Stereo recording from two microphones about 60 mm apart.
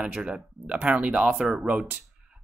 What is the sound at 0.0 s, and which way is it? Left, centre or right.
Speech, centre.